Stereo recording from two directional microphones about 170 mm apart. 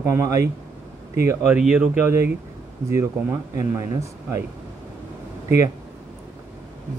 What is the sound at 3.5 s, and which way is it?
Speech, 15° right (ahead or behind).